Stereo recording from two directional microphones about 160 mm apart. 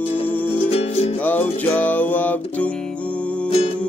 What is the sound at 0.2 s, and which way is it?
Music, 10° left (ahead or behind).